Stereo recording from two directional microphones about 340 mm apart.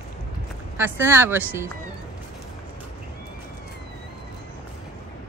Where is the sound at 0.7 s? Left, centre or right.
Centre.